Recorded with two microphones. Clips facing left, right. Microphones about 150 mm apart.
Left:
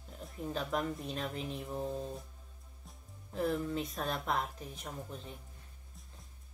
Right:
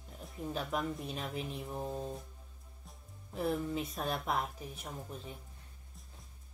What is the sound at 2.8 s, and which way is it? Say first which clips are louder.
Speech: even; 5° right (ahead or behind).